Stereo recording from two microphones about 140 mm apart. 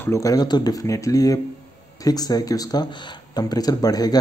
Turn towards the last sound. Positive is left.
turn(degrees=25)  # may be behind; listen again after turning